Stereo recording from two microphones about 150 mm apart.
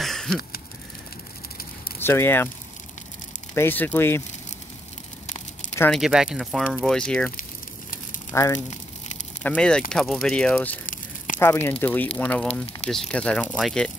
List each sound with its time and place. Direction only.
0.0 s a sound: 5° left (ahead or behind)
2.0 s speech: 15° left (ahead or behind)
3.5 s speech: 15° left (ahead or behind)
5.9 s speech: centre (ahead or behind)
8.3 s speech: 20° left (ahead or behind)
8.5 s crumpling: 50° left (ahead or behind)
9.4 s speech: 5° left (ahead or behind)